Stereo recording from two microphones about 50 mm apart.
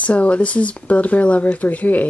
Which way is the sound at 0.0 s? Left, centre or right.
Left.